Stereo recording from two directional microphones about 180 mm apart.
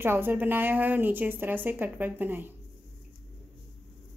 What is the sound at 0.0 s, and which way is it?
A woman's voice, 10° right (ahead or behind).